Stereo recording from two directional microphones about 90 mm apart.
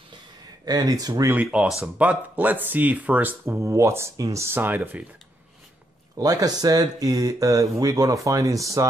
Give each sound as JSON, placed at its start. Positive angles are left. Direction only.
{"t": 0.7, "sound": "speech", "side_deg": -45}
{"t": 1.3, "sound": "speech", "side_deg": -15}
{"t": 6.1, "sound": "speech", "side_deg": -45}